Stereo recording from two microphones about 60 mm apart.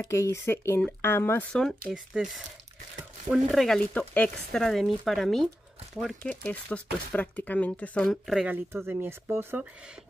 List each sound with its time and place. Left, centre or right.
0.0 s speech: left
1.5 s speech: centre
3.9 s speech: left
4.5 s speech: centre
6.2 s speech: left
8.1 s speech: centre
8.5 s speech: right
9.6 s speech: centre